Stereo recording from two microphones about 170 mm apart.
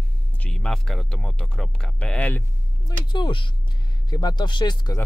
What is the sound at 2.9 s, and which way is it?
Speech, 25° left (ahead or behind).